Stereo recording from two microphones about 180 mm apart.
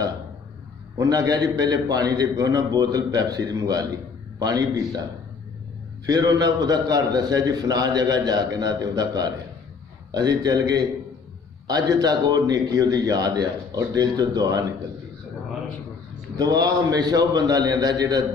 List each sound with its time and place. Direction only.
0.9 s a man's voice: 20° right (ahead or behind)
6.0 s a man's voice: 20° right (ahead or behind)
16.3 s a man's voice: 20° right (ahead or behind)